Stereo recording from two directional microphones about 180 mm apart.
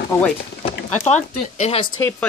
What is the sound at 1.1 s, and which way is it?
Speech, 40° left (ahead or behind).